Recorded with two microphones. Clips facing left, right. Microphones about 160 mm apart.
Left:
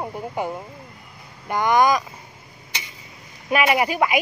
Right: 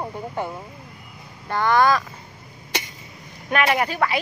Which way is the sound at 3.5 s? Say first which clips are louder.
Left 2 dB; 5° left (ahead or behind).